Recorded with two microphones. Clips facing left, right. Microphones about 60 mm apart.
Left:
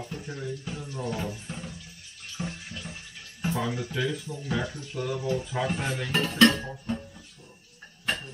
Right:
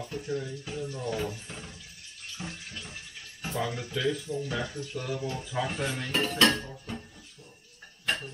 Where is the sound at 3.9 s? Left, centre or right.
Centre.